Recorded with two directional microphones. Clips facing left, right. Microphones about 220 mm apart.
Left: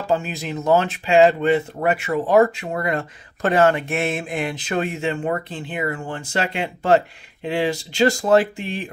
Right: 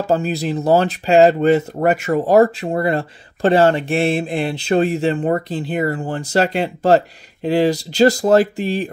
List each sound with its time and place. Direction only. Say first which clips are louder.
0.0 s speech: right 5 dB; 40° right (ahead or behind)